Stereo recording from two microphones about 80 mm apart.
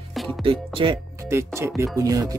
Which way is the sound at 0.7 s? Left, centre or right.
Right.